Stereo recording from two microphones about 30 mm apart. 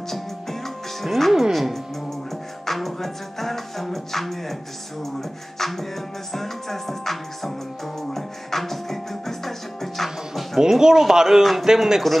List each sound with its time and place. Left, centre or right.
1.0 s music: centre
5.6 s music: centre
10.6 s a man's voice: centre